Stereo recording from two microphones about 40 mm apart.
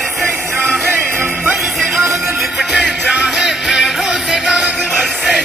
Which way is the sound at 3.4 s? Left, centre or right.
Centre.